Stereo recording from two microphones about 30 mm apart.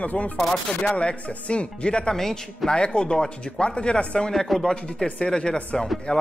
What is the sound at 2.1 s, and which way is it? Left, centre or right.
Speech, centre.